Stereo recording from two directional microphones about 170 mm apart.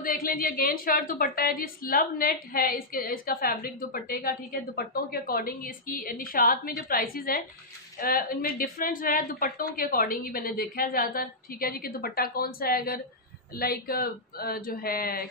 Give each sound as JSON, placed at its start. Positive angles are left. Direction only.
{"t": 0.0, "sound": "a woman's voice", "side_deg": 55}